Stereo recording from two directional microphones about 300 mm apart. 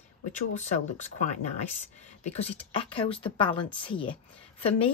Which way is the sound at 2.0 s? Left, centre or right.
Left.